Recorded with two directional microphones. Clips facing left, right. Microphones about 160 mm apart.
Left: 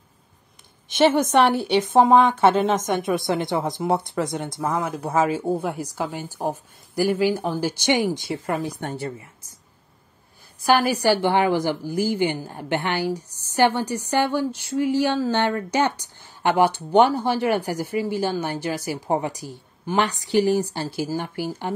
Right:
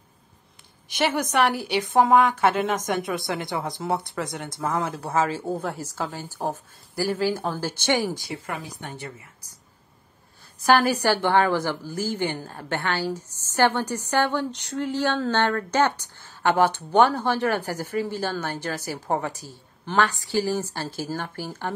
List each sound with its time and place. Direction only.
0.8 s a woman's voice: 25° left (ahead or behind)
10.6 s a woman's voice: 10° left (ahead or behind)